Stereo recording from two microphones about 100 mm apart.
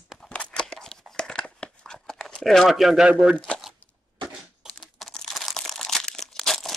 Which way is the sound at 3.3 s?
10° left (ahead or behind).